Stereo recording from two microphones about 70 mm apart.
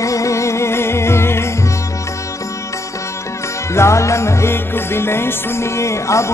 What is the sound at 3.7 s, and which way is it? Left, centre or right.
Music, left.